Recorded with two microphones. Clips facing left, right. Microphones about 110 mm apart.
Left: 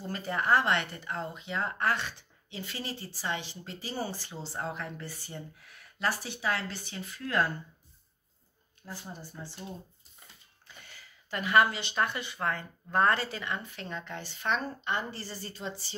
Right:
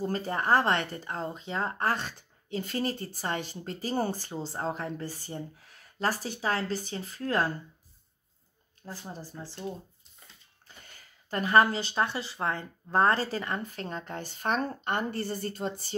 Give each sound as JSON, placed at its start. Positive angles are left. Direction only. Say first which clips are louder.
{"t": 0.0, "sound": "speech", "louder": "right 3 dB", "side_deg": -40}
{"t": 8.8, "sound": "speech", "louder": "right 2 dB", "side_deg": -35}
{"t": 10.8, "sound": "a sound", "louder": "left 1 dB", "side_deg": -45}
{"t": 11.9, "sound": "speech", "louder": "right 1 dB", "side_deg": -30}